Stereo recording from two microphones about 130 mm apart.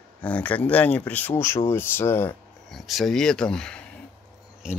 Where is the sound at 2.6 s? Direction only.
Centre (ahead or behind).